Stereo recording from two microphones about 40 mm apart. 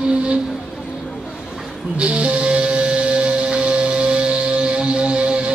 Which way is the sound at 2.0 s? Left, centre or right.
Right.